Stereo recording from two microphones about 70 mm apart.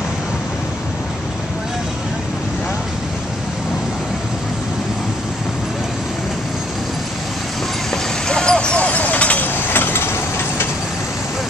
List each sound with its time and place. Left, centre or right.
7.9 s vehicle: centre; by 10.1 s left